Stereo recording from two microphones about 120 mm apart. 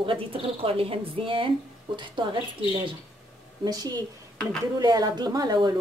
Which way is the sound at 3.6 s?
35° right (ahead or behind).